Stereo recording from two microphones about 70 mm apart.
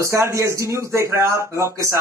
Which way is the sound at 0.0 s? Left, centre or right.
Right.